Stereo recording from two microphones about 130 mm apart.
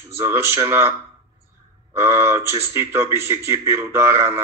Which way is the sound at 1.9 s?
20° right (ahead or behind).